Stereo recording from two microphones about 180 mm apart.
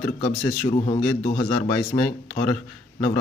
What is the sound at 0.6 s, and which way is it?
Speech, 35° left (ahead or behind).